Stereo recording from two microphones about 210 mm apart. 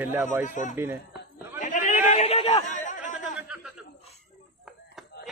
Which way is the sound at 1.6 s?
35° left (ahead or behind).